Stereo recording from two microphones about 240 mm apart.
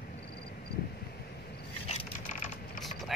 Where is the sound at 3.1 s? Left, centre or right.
Centre.